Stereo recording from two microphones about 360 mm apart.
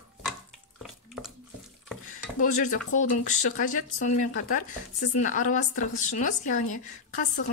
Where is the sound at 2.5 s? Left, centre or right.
Left.